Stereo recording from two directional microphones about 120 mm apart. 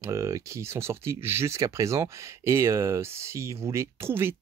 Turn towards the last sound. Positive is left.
turn(degrees=-20)  # may be behind; listen again after turning